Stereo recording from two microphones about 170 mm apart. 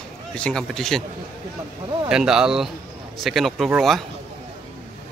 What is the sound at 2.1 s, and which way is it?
Speech, 5° right (ahead or behind).